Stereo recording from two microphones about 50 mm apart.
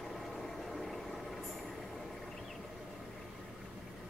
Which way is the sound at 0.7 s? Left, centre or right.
Centre.